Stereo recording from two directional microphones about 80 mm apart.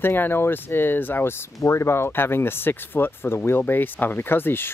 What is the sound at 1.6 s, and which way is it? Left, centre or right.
Speech, left.